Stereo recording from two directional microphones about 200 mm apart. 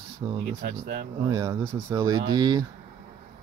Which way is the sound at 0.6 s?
50° right (ahead or behind).